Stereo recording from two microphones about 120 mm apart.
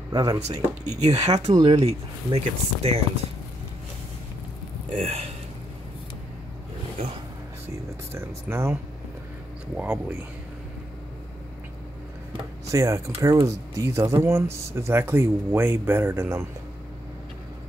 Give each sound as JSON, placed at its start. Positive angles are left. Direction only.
{"t": 0.1, "sound": "speech", "side_deg": -35}
{"t": 0.8, "sound": "speech", "side_deg": -65}
{"t": 4.9, "sound": "speech", "side_deg": -60}
{"t": 8.1, "sound": "speech", "side_deg": -20}
{"t": 9.8, "sound": "speech", "side_deg": -10}
{"t": 12.7, "sound": "speech", "side_deg": -25}